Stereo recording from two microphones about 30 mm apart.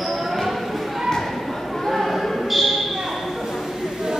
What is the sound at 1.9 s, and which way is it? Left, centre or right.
Basketball bounce, centre.